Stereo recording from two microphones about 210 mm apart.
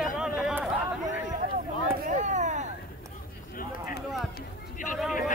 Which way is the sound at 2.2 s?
35° right (ahead or behind).